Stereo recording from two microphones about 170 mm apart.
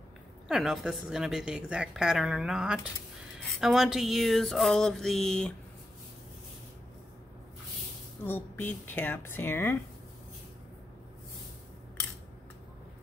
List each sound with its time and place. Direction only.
0.5 s a woman's voice: centre (ahead or behind)
8.2 s speech: 10° left (ahead or behind)